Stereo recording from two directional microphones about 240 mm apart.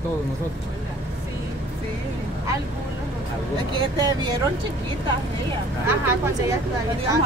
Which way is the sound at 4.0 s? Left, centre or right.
Centre.